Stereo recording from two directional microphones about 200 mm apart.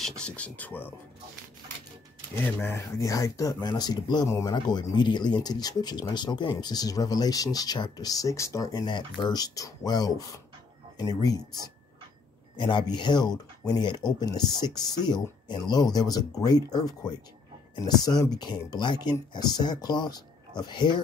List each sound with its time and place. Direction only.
0.2 s speech: 5° left (ahead or behind)
2.4 s speech: 10° left (ahead or behind)
12.5 s speech: 25° left (ahead or behind)